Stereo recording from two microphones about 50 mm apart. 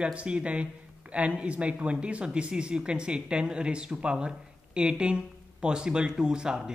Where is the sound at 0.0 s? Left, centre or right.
Right.